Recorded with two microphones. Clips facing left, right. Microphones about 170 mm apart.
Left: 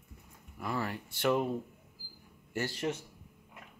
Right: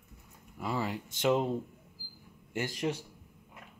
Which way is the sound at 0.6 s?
15° right (ahead or behind).